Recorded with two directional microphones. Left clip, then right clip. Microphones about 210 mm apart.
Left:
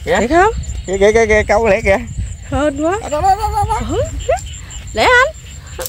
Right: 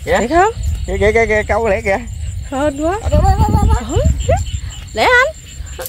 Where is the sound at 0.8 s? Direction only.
50° left (ahead or behind).